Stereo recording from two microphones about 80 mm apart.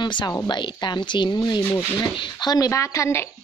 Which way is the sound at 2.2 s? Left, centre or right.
Left.